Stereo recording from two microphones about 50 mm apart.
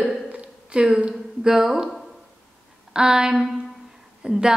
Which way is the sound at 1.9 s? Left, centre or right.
Centre.